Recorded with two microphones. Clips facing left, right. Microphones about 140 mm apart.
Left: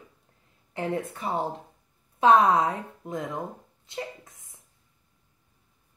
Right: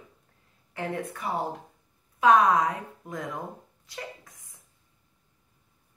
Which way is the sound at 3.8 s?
25° left (ahead or behind).